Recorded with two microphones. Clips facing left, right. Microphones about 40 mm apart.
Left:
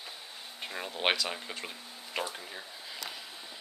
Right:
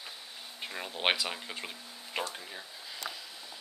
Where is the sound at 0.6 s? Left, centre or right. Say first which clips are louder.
Even; centre.